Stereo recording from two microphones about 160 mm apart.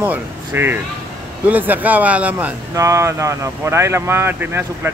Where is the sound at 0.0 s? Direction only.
10° right (ahead or behind).